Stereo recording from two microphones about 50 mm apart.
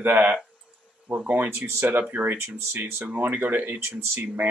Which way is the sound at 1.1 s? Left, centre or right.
Right.